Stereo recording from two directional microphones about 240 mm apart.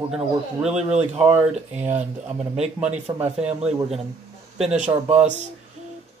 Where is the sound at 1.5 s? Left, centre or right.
Right.